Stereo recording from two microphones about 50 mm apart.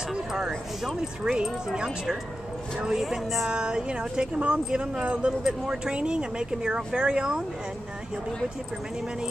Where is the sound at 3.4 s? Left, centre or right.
Centre.